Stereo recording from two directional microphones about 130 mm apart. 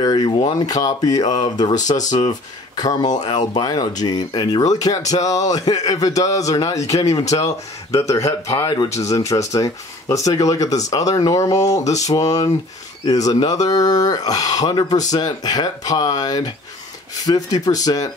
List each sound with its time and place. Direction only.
0.0 s speech: 35° left (ahead or behind)
1.8 s speech: 70° left (ahead or behind)
2.7 s speech: 30° left (ahead or behind)